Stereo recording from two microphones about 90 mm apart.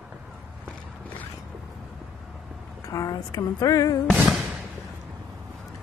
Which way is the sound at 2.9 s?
40° left (ahead or behind).